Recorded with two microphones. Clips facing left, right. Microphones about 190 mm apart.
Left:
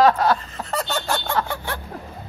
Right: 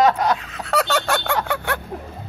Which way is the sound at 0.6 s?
80° right.